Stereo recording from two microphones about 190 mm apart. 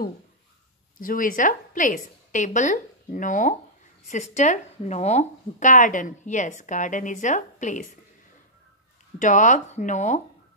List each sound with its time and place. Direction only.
0.9 s a woman's voice: 45° left (ahead or behind)
9.2 s a woman's voice: 40° left (ahead or behind)